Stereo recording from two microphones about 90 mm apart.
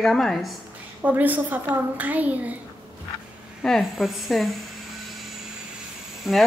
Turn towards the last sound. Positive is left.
turn(degrees=-5)  # may be behind; listen again after turning